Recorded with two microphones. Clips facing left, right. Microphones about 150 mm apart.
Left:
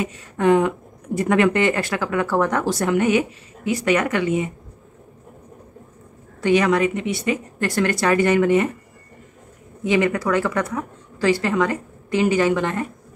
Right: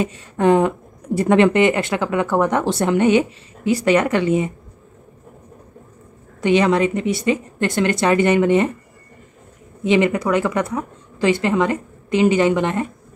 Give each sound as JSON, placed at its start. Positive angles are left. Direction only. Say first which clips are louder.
{"t": 0.0, "sound": "speech", "louder": "right 2 dB", "side_deg": -30}
{"t": 6.4, "sound": "speech", "louder": "right 2 dB", "side_deg": -25}
{"t": 7.5, "sound": "speech", "louder": "right 2 dB", "side_deg": -20}
{"t": 9.8, "sound": "speech", "louder": "right 3 dB", "side_deg": -20}